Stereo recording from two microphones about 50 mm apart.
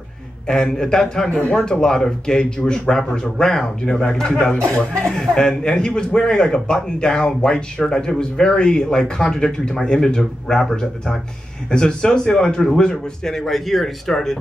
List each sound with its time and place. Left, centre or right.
0.5 s a man's voice: centre